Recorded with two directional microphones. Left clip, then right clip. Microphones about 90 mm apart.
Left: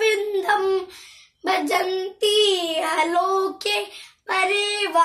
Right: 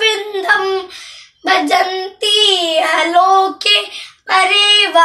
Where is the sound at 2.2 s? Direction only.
35° left (ahead or behind).